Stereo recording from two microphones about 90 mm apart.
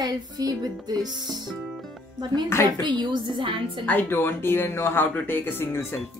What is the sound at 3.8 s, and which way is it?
Speech, 20° left (ahead or behind).